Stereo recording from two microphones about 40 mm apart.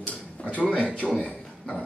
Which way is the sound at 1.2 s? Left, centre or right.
Left.